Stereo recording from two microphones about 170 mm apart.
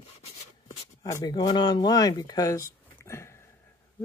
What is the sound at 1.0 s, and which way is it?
Speech, 20° left (ahead or behind).